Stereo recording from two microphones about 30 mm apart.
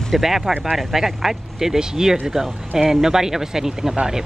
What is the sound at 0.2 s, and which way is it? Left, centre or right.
Speech, centre.